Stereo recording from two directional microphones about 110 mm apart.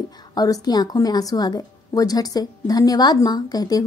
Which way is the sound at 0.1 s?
35° left (ahead or behind).